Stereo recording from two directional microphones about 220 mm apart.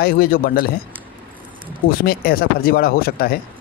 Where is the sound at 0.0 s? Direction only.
40° left (ahead or behind).